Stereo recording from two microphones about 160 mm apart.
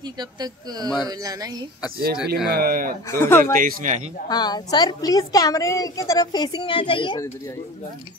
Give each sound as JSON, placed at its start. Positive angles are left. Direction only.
{"t": 0.2, "sound": "speech", "side_deg": -25}
{"t": 2.2, "sound": "speech", "side_deg": -85}
{"t": 3.1, "sound": "speech", "side_deg": 15}
{"t": 3.5, "sound": "speech", "side_deg": -60}
{"t": 4.3, "sound": "a woman's voice", "side_deg": 25}